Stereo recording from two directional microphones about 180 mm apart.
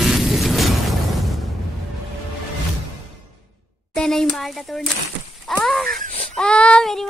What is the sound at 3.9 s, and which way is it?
A woman's voice, centre (ahead or behind).